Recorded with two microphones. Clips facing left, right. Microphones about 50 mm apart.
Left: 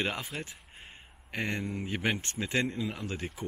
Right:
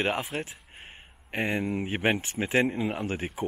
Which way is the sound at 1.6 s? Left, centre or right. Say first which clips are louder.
Right 5 dB; right.